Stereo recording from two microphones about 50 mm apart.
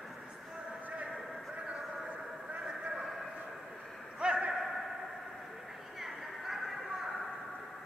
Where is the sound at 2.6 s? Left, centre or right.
Centre.